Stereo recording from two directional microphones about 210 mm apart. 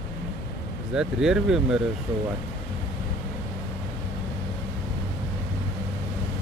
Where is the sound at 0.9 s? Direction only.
5° right (ahead or behind).